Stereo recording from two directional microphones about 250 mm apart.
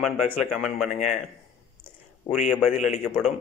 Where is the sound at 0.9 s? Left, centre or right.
Left.